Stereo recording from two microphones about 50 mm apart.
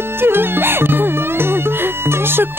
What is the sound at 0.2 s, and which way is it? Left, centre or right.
Music, right.